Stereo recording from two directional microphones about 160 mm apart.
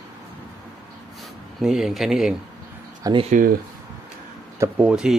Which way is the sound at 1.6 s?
5° right (ahead or behind).